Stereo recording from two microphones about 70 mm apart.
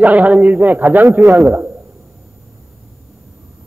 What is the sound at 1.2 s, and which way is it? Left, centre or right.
Speech, right.